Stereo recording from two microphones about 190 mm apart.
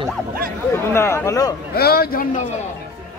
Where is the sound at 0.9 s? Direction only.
15° left (ahead or behind).